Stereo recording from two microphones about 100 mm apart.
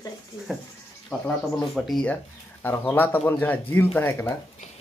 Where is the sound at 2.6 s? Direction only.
20° left (ahead or behind).